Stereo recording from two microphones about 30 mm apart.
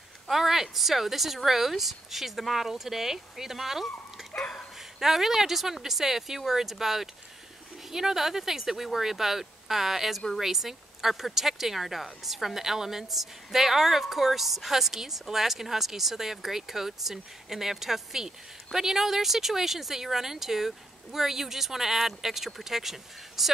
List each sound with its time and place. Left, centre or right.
0.3 s speech: centre
4.4 s speech: centre
5.0 s speech: centre